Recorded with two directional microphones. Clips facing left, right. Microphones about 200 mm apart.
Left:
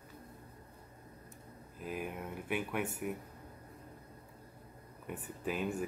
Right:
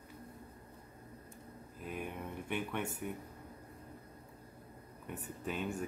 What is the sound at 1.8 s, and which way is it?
Speech, 5° left (ahead or behind).